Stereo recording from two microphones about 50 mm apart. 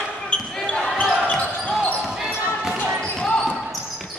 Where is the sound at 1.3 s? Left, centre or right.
Left.